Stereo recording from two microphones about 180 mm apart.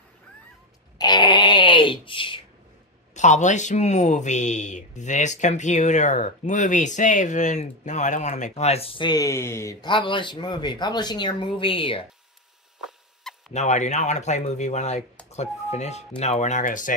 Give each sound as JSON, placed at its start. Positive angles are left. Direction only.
{"t": 0.9, "sound": "a sound", "side_deg": 25}
{"t": 3.2, "sound": "speech", "side_deg": 40}
{"t": 13.5, "sound": "speech", "side_deg": 40}